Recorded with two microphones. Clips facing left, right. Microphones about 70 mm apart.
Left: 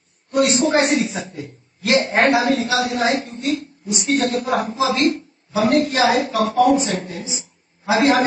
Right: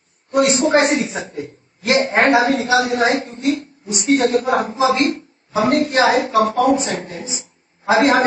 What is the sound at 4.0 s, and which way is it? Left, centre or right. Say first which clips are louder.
Speech: right 5 dB; right.